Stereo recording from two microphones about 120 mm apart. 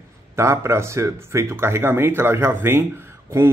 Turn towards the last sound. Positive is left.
turn(degrees=-20)  # may be behind; listen again after turning